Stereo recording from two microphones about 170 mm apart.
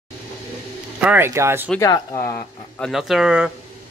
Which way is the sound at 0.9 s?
10° right (ahead or behind).